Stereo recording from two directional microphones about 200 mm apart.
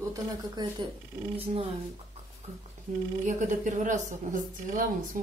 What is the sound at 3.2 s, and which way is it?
Speech, 40° right (ahead or behind).